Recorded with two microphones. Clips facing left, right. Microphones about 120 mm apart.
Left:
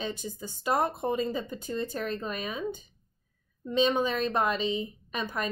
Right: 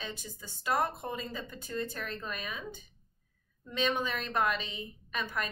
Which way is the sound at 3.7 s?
25° left (ahead or behind).